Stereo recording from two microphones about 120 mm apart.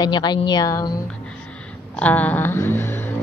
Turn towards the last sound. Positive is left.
turn(degrees=15)  # may be behind; listen again after turning